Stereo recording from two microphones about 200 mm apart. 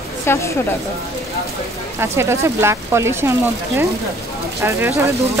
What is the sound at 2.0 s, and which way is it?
Speech, 15° right (ahead or behind).